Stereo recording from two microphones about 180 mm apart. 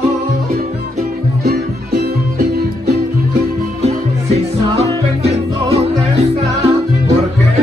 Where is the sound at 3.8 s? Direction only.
35° right (ahead or behind).